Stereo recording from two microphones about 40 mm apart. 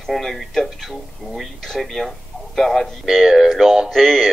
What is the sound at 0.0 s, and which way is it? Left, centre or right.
Speech, centre.